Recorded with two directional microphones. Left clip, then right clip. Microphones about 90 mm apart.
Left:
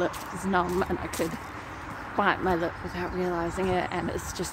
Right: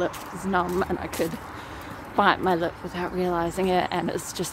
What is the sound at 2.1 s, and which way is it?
Speech, 40° right (ahead or behind).